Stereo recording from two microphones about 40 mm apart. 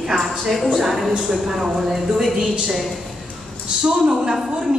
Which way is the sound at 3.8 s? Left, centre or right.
Centre.